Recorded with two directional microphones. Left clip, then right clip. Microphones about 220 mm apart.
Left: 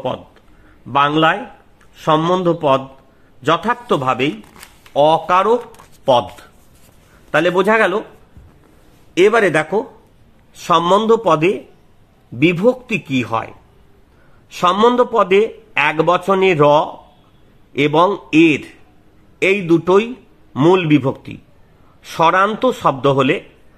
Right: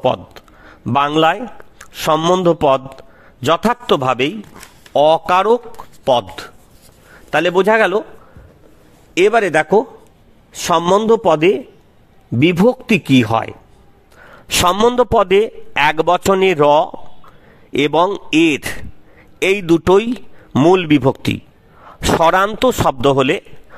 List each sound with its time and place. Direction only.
0.0 s a man's voice: 50° right (ahead or behind)
9.1 s a man's voice: 45° right (ahead or behind)
14.6 s a man's voice: 45° right (ahead or behind)